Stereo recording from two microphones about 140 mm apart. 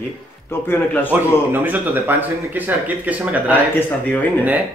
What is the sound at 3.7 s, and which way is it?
Speech, 15° left (ahead or behind).